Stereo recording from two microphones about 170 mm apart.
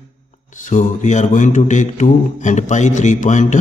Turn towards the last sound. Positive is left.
turn(degrees=45)  # may be behind; listen again after turning